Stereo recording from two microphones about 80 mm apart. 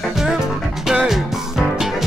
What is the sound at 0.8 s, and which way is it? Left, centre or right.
Music, centre.